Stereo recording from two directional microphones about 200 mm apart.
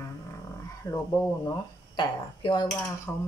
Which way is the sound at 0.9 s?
20° left (ahead or behind).